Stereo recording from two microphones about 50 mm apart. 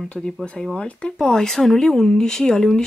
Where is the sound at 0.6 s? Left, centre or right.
Centre.